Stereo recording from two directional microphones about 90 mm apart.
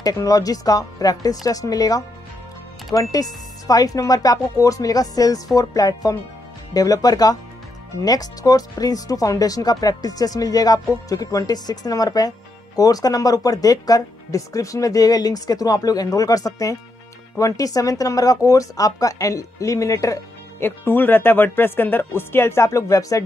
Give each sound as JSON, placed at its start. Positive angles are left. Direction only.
{"t": 0.0, "sound": "speech", "side_deg": 40}
{"t": 20.5, "sound": "speech", "side_deg": 25}